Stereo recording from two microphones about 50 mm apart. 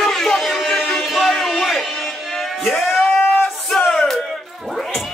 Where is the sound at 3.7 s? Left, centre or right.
Centre.